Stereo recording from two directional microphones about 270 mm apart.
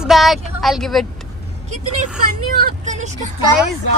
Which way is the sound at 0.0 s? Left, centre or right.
Centre.